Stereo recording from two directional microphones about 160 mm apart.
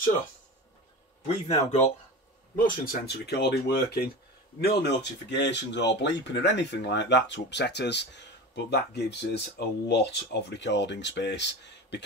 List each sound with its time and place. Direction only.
1.2 s speech: 45° left (ahead or behind)
2.5 s speech: 60° left (ahead or behind); by 12.0 s 90° left